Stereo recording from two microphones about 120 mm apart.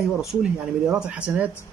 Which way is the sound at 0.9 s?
10° right (ahead or behind).